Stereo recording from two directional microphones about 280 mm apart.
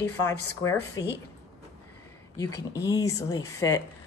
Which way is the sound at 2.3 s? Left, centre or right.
Centre.